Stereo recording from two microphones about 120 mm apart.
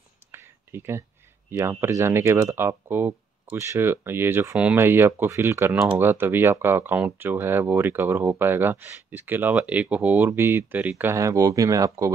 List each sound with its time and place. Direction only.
0.3 s a sound: 20° right (ahead or behind)
1.5 s speech: 20° right (ahead or behind)
11.1 s speech: 25° right (ahead or behind)